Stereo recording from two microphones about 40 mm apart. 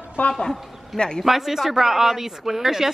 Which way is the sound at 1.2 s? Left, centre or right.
Centre.